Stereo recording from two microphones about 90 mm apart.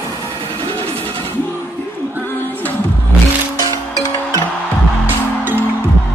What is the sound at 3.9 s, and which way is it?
Music, 35° right (ahead or behind).